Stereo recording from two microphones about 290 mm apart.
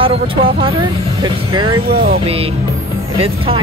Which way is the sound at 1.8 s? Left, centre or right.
Right.